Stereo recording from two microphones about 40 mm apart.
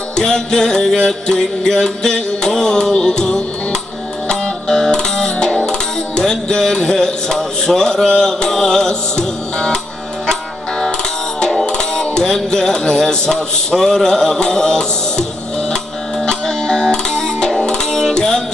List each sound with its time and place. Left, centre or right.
0.1 s music: centre
10.8 s music: centre
12.4 s speech: centre
16.3 s music: centre